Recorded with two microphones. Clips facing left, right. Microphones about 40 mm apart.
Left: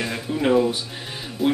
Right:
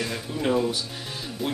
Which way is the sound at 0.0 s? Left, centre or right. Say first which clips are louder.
Left 4 dB; left.